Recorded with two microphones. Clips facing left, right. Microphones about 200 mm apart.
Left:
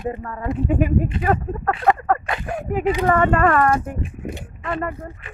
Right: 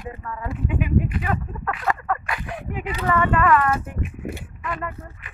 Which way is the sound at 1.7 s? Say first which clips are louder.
Left 7 dB; 30° left (ahead or behind).